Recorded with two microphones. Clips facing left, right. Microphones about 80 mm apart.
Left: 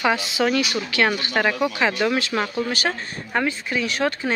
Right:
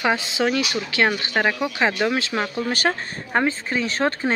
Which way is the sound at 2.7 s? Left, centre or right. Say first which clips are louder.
Right 2 dB; right.